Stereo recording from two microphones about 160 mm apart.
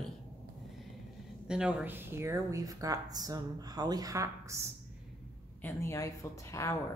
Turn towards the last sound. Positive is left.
turn(degrees=20)  # may be behind; listen again after turning